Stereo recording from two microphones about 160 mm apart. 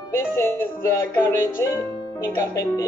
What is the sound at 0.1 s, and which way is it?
Music, 15° left (ahead or behind).